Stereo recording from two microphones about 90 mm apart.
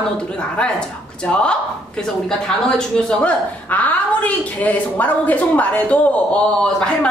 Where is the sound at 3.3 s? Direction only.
15° left (ahead or behind).